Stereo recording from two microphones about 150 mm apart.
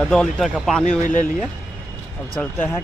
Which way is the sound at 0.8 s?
60° left (ahead or behind).